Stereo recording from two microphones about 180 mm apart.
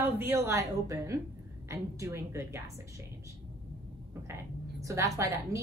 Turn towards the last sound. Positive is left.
turn(degrees=-15)  # may be behind; listen again after turning